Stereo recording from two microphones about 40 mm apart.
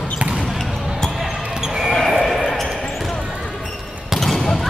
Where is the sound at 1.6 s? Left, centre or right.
Centre.